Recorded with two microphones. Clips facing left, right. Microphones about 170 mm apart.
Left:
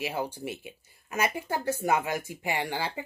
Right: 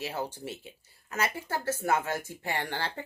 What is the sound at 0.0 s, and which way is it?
Speech, 10° left (ahead or behind).